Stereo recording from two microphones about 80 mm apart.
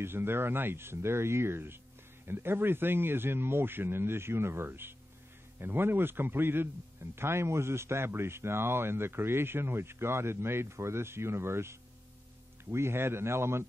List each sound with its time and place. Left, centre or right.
0.0 s a man's voice: right